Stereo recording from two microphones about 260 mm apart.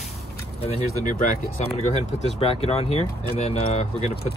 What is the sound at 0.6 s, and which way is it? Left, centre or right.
Speech, left.